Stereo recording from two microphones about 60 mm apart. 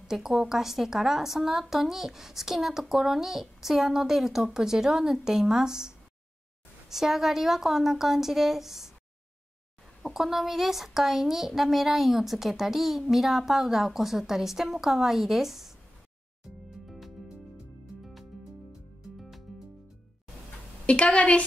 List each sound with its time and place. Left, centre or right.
0.1 s a woman's voice: centre
10.0 s speech: centre
16.4 s music: centre
18.7 s music: centre
20.8 s a woman's voice: centre